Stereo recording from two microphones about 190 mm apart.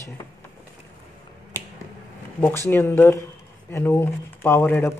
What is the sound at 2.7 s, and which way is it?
Speech, 10° left (ahead or behind).